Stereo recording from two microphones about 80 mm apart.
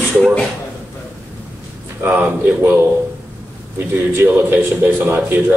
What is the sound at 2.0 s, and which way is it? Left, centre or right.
Speech, right.